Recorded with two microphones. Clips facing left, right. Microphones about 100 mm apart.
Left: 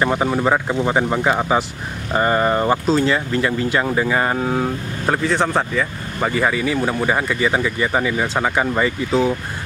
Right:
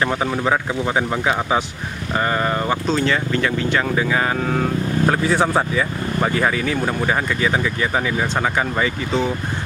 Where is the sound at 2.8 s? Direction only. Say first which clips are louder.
Left 2 dB; 5° left (ahead or behind).